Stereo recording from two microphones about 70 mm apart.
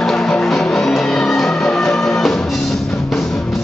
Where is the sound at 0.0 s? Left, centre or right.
Centre.